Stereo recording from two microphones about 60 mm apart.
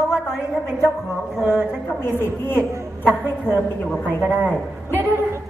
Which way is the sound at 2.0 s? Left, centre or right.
Left.